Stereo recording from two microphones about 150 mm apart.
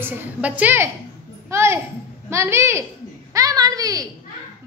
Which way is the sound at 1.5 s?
15° right (ahead or behind).